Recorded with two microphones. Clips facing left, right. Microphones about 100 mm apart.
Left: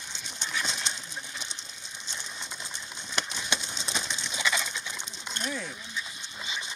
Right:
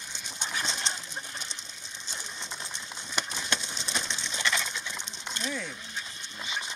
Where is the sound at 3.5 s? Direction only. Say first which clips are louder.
Even; 15° left (ahead or behind).